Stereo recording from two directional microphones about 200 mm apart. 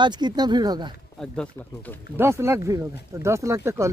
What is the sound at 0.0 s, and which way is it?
Speech, 20° right (ahead or behind).